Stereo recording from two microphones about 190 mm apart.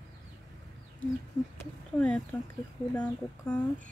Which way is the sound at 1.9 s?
5° left (ahead or behind).